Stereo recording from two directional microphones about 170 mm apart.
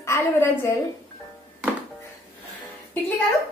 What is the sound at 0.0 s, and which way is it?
Speech, 15° left (ahead or behind).